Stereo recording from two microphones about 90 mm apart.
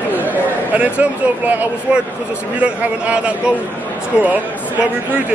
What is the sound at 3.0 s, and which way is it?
Speech, 15° right (ahead or behind).